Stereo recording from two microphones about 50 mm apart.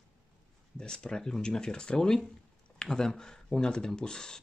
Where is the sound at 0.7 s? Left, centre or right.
Centre.